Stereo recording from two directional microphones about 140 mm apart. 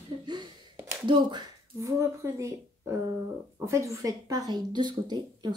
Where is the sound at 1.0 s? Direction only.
30° right (ahead or behind).